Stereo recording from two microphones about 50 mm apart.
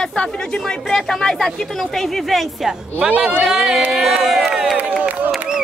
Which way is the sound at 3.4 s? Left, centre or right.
Centre.